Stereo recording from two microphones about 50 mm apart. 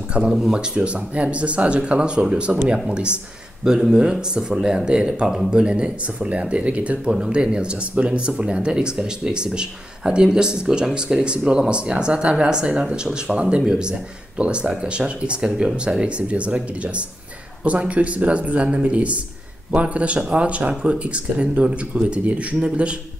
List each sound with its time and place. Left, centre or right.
0.2 s speech: right
7.1 s speech: centre